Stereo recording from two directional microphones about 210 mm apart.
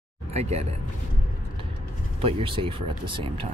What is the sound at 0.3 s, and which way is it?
Speech, 30° right (ahead or behind).